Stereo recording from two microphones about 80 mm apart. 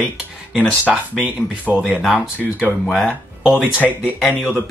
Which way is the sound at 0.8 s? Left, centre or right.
Centre.